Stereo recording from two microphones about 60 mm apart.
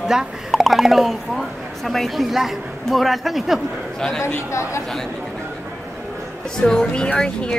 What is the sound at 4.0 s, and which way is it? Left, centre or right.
Speech, centre.